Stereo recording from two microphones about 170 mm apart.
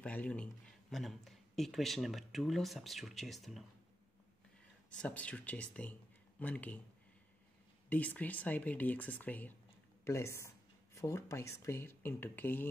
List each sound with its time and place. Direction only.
0.0 s a man's voice: 5° left (ahead or behind)
5.0 s speech: 5° left (ahead or behind)
7.9 s speech: 10° left (ahead or behind)